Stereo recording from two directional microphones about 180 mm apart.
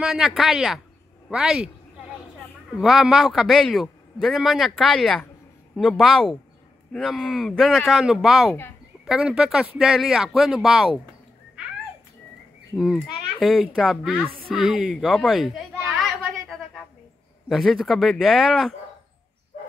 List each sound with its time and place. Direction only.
0.0 s a man's voice: centre (ahead or behind)
2.8 s a man's voice: centre (ahead or behind)
12.7 s a man's voice: centre (ahead or behind)
14.5 s a sound: 5° right (ahead or behind)
17.5 s a man's voice: centre (ahead or behind)